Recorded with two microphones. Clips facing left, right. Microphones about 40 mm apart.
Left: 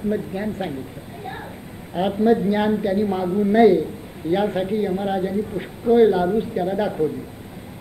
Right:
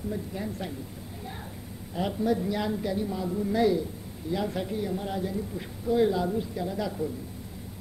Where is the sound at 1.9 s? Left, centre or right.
Left.